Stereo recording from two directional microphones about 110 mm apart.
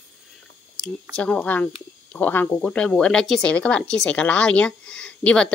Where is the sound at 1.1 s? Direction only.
10° left (ahead or behind).